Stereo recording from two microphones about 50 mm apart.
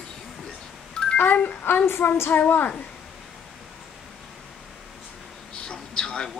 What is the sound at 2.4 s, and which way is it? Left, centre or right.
Speech, left.